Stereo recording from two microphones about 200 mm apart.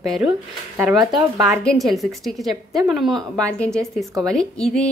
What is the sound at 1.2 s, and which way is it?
Speech, 15° right (ahead or behind).